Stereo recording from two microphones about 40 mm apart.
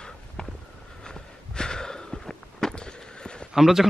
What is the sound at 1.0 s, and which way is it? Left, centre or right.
Walk, centre.